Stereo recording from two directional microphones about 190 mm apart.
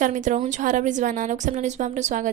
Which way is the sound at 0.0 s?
40° right (ahead or behind).